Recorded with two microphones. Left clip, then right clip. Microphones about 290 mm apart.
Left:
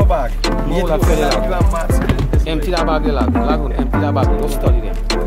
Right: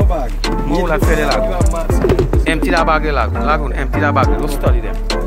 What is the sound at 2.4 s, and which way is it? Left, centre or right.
Music, centre.